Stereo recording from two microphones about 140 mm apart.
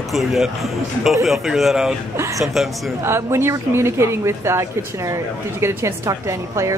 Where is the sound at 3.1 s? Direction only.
20° right (ahead or behind).